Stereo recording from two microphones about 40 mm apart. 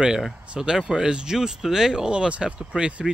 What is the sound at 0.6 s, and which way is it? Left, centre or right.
Speech, centre.